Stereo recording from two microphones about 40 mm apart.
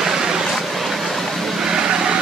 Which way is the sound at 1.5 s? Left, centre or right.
Centre.